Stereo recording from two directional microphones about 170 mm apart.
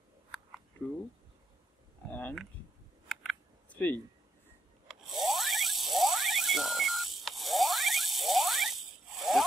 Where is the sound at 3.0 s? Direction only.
5° left (ahead or behind).